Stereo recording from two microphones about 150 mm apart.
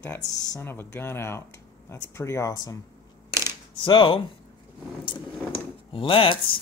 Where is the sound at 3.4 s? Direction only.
30° left (ahead or behind).